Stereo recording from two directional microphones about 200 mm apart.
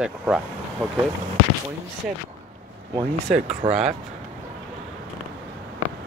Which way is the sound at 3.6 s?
25° right (ahead or behind).